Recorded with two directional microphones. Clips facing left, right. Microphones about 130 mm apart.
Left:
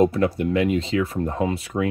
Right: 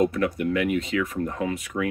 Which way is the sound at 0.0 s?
30° left (ahead or behind).